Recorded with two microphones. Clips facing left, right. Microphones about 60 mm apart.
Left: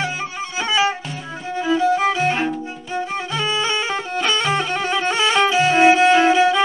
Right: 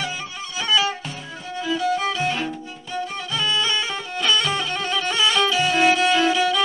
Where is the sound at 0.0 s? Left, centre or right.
Left.